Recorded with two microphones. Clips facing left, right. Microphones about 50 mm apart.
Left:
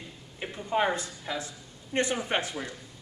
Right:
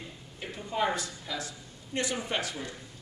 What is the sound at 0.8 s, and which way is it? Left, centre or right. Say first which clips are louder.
A man's voice: left 2 dB; left.